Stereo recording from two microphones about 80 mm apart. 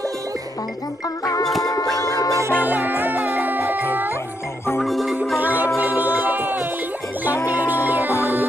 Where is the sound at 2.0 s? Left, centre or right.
Left.